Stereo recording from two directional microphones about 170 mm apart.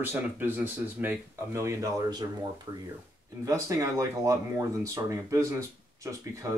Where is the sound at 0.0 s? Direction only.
10° right (ahead or behind).